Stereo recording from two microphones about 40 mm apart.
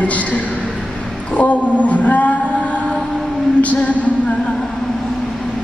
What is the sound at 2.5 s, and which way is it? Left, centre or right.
Mantra, left.